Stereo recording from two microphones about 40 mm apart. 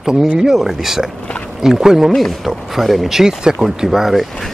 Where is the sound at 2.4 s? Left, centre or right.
Centre.